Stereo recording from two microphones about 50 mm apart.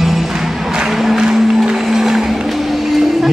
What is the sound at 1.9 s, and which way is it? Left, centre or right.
Music, centre.